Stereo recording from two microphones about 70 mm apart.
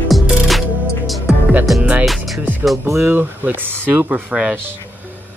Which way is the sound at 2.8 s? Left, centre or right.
Right.